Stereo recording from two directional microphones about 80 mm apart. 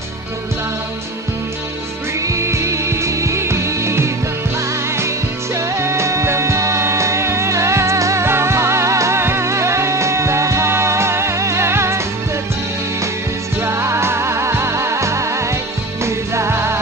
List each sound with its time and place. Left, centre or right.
2.2 s music: right
13.6 s music: right